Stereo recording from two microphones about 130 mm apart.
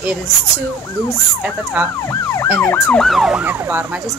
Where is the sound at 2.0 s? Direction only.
20° left (ahead or behind).